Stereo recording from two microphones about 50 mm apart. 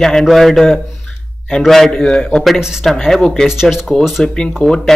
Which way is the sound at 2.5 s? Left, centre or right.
Centre.